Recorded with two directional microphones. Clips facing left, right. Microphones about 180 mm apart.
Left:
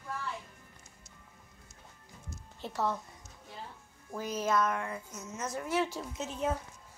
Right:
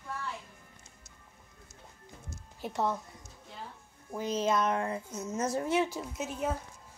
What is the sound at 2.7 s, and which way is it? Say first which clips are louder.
Speech: right 2 dB; 20° right (ahead or behind).